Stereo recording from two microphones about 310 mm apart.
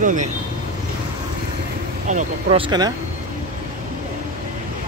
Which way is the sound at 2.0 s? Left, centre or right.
Right.